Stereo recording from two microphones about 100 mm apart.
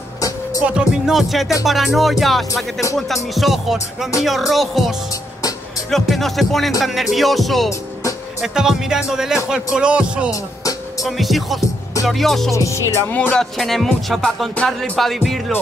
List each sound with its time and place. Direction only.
0.7 s music: 10° right (ahead or behind)
9.1 s speech: 5° right (ahead or behind)
10.3 s music: 35° left (ahead or behind)
11.1 s music: centre (ahead or behind)
12.5 s music: 30° left (ahead or behind)
13.4 s music: centre (ahead or behind)
14.5 s speech: 10° left (ahead or behind)
15.0 s music: centre (ahead or behind)